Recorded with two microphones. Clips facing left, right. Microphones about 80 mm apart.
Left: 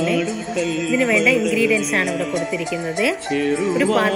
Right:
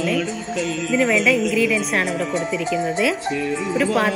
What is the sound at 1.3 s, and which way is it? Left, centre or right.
Speech, centre.